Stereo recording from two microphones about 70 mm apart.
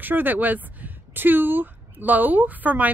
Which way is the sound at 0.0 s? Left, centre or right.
Right.